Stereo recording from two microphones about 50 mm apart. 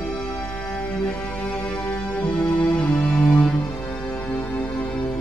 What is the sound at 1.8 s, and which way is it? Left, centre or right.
Music, left.